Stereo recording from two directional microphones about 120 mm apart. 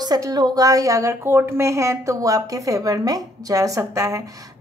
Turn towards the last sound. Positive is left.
turn(degrees=-25)  # may be behind; listen again after turning